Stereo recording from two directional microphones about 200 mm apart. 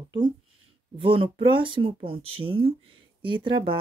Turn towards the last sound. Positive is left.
turn(degrees=-25)  # may be behind; listen again after turning